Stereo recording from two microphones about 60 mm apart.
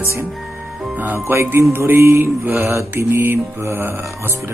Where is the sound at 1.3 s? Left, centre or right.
Right.